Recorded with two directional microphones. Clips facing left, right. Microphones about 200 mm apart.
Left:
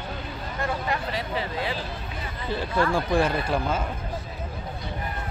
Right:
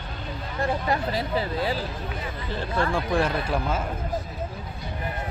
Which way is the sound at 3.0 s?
Centre (ahead or behind).